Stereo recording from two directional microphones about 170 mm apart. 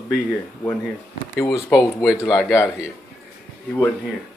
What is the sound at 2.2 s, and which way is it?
Speech, 15° left (ahead or behind).